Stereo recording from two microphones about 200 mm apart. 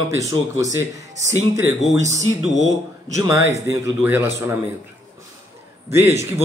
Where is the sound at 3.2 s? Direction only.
15° right (ahead or behind).